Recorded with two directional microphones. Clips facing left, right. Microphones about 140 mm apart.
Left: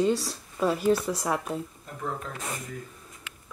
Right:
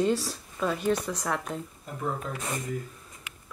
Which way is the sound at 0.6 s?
10° left (ahead or behind).